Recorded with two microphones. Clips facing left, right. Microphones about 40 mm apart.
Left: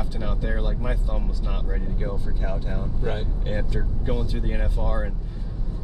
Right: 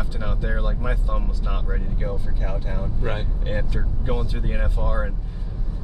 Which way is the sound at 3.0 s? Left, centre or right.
Right.